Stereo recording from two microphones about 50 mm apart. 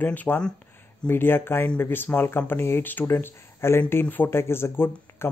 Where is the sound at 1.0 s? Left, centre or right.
Left.